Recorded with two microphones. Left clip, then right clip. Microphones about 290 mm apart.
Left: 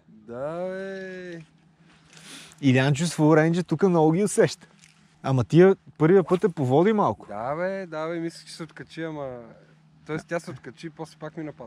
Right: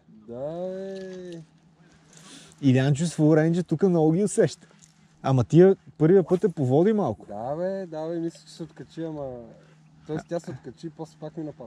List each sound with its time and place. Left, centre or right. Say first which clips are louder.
0.4 s a sound: left 1 dB; left
2.1 s speech: left 3 dB; centre
7.3 s speech: left 1 dB; left
10.2 s speech: left 1 dB; centre
11.0 s speech: left 1 dB; left